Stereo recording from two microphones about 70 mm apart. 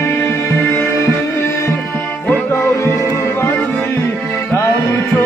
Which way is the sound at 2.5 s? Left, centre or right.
Left.